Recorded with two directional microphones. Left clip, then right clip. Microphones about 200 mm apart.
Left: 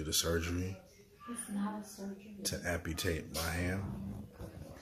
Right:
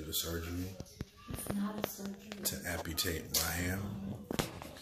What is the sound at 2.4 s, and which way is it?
Speech, 35° left (ahead or behind).